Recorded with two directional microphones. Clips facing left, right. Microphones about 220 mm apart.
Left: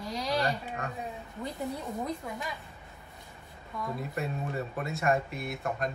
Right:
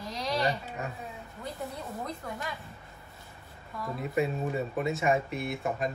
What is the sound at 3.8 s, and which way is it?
Speech, centre (ahead or behind).